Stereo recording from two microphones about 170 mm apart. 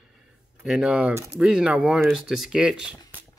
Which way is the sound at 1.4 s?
5° right (ahead or behind).